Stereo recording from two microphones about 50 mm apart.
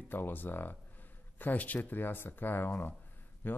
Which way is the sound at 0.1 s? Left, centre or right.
Left.